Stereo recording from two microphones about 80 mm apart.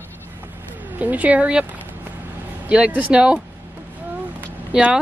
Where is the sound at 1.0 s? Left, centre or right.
Centre.